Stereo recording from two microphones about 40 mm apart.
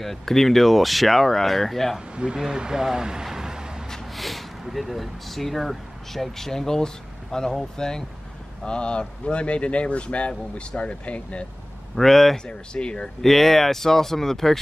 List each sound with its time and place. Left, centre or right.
0.0 s speech: centre
2.1 s speech: centre
3.3 s vehicle: centre
3.9 s snort: centre
4.6 s speech: centre; by 11.4 s left
11.9 s speech: centre
12.4 s speech: left
13.2 s speech: centre